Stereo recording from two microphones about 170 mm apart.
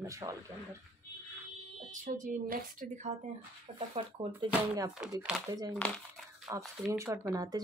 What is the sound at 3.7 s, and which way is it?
Speech, 30° right (ahead or behind).